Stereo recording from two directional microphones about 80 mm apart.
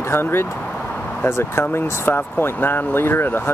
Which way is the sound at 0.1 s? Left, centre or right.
Left.